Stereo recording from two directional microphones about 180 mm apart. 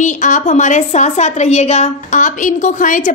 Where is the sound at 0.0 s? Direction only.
45° left (ahead or behind).